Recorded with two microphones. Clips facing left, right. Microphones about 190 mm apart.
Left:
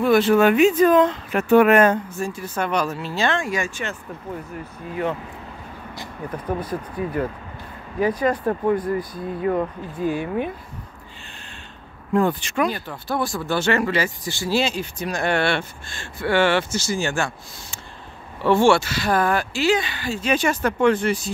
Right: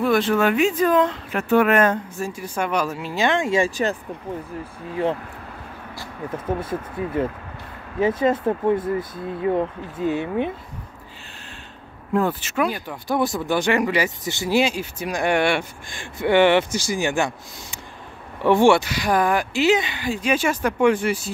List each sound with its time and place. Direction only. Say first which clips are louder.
0.0 s speech: left 2 dB; 5° left (ahead or behind)
0.4 s speech: left 4 dB; 20° left (ahead or behind)
2.1 s speech: even; 10° right (ahead or behind); by 4.0 s 35° right (ahead or behind)
6.6 s speech: even; 25° right (ahead or behind)
12.1 s speech: left 2 dB; 5° right (ahead or behind)